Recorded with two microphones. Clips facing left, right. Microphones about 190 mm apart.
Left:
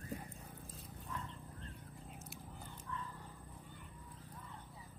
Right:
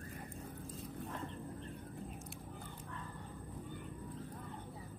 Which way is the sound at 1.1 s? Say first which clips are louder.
Left 1 dB; 60° right (ahead or behind).